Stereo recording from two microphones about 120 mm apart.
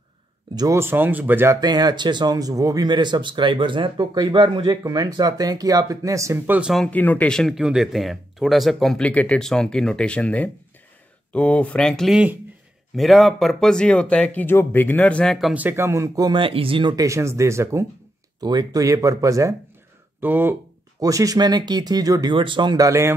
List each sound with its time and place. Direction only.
0.6 s speech: 25° right (ahead or behind)
1.6 s speech: 35° right (ahead or behind); by 6.7 s 15° right (ahead or behind)
6.9 s speech: 15° left (ahead or behind)
15.5 s speech: 15° right (ahead or behind)
16.3 s speech: 45° right (ahead or behind)
16.9 s speech: 25° right (ahead or behind)
18.4 s speech: 35° right (ahead or behind)
20.2 s speech: 15° right (ahead or behind)
21.0 s speech: 30° right (ahead or behind)